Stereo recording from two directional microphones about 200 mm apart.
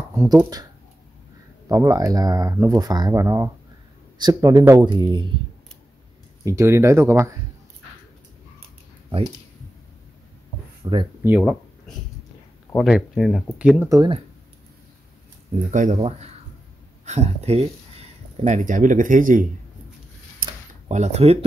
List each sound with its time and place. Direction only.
0.1 s speech: 15° right (ahead or behind)
1.7 s speech: 20° right (ahead or behind)
6.4 s speech: 15° right (ahead or behind)
10.8 s speech: 25° right (ahead or behind)
11.2 s speech: 5° right (ahead or behind)
12.7 s speech: centre (ahead or behind)
13.8 s speech: 20° right (ahead or behind)
15.7 s speech: 40° right (ahead or behind)
20.9 s speech: 35° right (ahead or behind)